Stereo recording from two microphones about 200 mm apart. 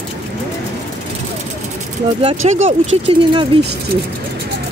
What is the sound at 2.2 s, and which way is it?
Speech, 30° right (ahead or behind).